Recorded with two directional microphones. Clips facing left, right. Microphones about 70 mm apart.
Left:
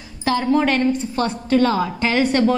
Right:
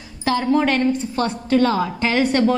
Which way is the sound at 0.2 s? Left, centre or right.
Centre.